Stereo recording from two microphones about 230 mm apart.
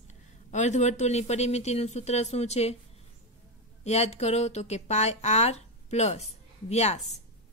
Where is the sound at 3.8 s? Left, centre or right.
Left.